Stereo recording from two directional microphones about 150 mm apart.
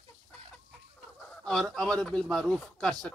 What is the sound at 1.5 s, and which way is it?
Speech, 5° left (ahead or behind).